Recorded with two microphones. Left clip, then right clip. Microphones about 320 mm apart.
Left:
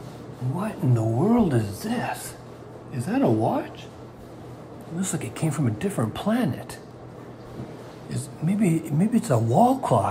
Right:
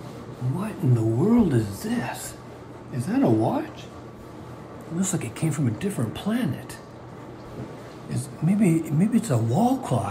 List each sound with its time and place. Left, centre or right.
0.6 s speech: centre
5.1 s speech: centre
8.1 s speech: centre
9.1 s speech: centre